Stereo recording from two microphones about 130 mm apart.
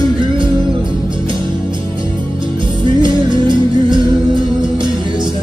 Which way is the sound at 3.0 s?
35° right (ahead or behind).